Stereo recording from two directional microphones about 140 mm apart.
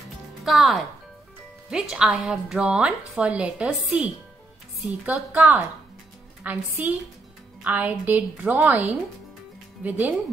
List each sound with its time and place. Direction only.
0.5 s a woman's voice: centre (ahead or behind)